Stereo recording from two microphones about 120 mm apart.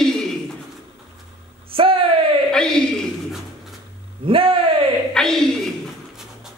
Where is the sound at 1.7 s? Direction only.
50° right (ahead or behind).